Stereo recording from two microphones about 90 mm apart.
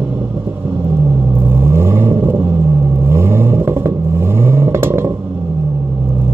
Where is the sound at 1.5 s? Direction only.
30° right (ahead or behind).